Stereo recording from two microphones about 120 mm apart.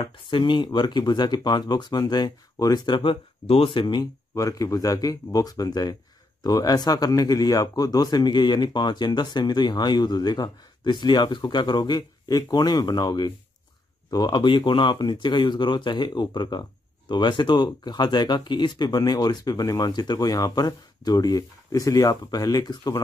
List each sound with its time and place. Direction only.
0.0 s speech: 45° left (ahead or behind)